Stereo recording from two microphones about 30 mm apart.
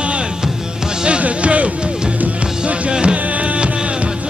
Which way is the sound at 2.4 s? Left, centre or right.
Right.